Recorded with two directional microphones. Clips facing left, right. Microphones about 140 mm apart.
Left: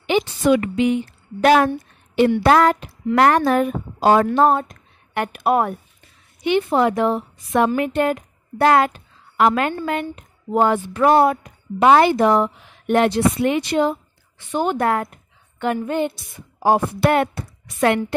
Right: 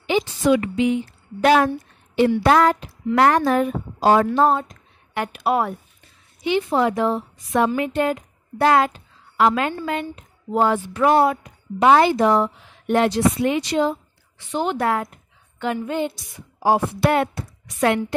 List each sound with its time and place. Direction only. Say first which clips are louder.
0.0 s a woman's voice: left 1 dB; 60° left (ahead or behind)